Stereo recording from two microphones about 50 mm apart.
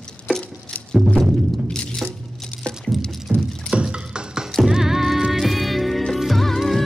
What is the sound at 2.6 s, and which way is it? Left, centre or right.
Patter, left.